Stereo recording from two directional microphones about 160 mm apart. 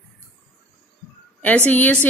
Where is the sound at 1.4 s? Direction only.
10° left (ahead or behind).